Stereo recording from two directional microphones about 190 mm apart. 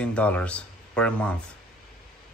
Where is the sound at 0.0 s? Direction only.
5° left (ahead or behind).